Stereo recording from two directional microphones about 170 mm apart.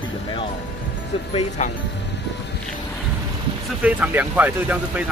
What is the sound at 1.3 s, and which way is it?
Speech, 45° left (ahead or behind).